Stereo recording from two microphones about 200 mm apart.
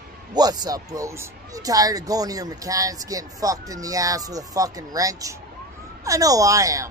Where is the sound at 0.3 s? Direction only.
20° right (ahead or behind).